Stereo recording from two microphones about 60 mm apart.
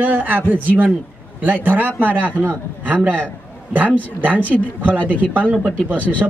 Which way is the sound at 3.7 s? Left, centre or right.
Right.